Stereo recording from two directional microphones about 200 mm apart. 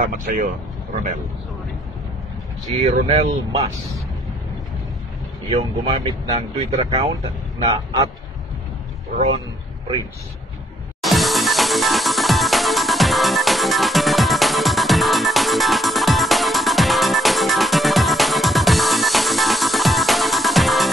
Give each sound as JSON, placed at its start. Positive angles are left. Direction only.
{"t": 0.0, "sound": "speech", "side_deg": -45}
{"t": 2.6, "sound": "speech", "side_deg": -35}
{"t": 5.6, "sound": "speech", "side_deg": -30}
{"t": 11.0, "sound": "music", "side_deg": 0}